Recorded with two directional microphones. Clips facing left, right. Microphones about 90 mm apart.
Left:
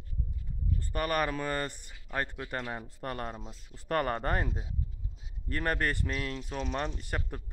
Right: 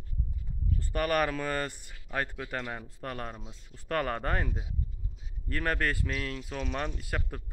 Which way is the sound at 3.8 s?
15° left (ahead or behind).